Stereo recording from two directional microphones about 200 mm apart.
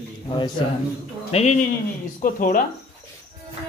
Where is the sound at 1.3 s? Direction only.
30° left (ahead or behind).